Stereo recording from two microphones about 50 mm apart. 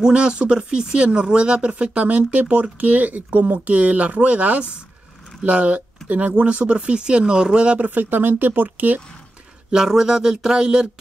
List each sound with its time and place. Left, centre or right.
0.0 s speech: centre
7.9 s speech: right
9.7 s a sound: centre